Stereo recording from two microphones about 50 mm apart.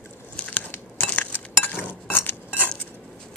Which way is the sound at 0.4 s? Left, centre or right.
Left.